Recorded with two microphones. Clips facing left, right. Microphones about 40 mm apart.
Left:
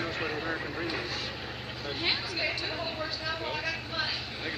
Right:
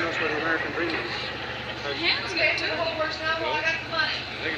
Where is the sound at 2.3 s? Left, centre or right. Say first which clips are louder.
Right 8 dB; right.